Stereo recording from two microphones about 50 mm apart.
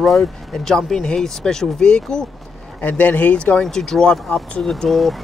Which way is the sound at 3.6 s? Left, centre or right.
Centre.